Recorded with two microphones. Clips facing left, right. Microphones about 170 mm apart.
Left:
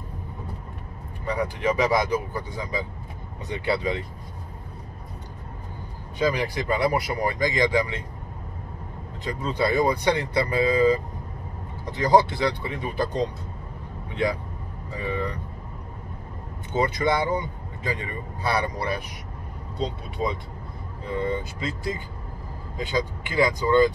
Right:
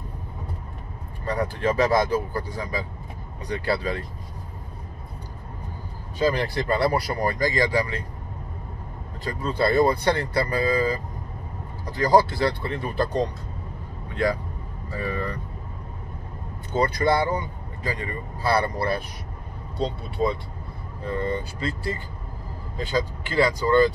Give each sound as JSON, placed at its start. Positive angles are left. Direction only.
{"t": 1.3, "sound": "speech", "side_deg": 15}
{"t": 6.1, "sound": "speech", "side_deg": 15}
{"t": 9.2, "sound": "speech", "side_deg": 20}
{"t": 14.9, "sound": "speech", "side_deg": 20}
{"t": 16.7, "sound": "speech", "side_deg": 20}
{"t": 21.2, "sound": "speech", "side_deg": 15}